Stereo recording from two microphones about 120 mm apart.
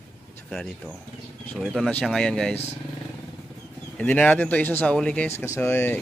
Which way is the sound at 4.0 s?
15° left (ahead or behind).